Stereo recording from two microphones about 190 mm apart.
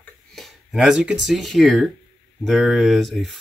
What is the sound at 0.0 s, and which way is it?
Speech, centre (ahead or behind).